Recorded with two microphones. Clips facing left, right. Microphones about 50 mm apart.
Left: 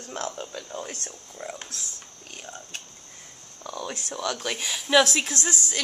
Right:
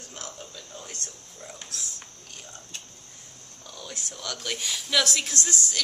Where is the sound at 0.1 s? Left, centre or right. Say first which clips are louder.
Left 10 dB; left.